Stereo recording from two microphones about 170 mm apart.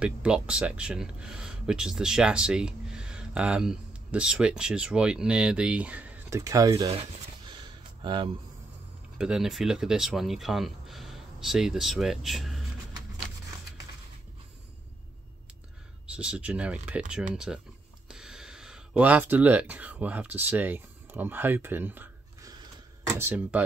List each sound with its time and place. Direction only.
0.0 s speech: 5° right (ahead or behind)
6.4 s speech: 20° right (ahead or behind)
6.9 s a sound: 35° right (ahead or behind)
8.0 s speech: 30° right (ahead or behind)
9.2 s speech: 5° right (ahead or behind)
16.2 s speech: 5° right (ahead or behind)